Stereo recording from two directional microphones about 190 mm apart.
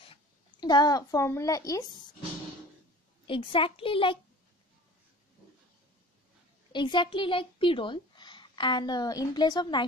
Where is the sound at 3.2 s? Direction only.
25° left (ahead or behind).